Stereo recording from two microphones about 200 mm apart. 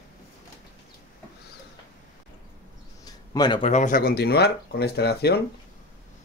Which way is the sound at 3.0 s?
20° left (ahead or behind).